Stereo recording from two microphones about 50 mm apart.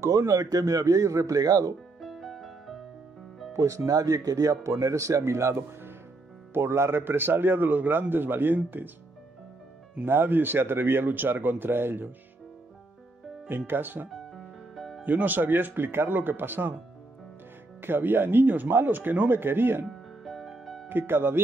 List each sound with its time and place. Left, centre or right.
0.0 s a man's voice: right
2.0 s music: centre
3.5 s a man's voice: right
7.0 s a man's voice: right
10.0 s a man's voice: right
13.7 s a man's voice: right
14.1 s music: centre
15.0 s a man's voice: right
17.8 s a man's voice: right
19.9 s music: centre
20.9 s a man's voice: right